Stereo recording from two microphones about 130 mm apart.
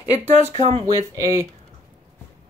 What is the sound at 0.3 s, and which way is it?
Speech, 55° right (ahead or behind).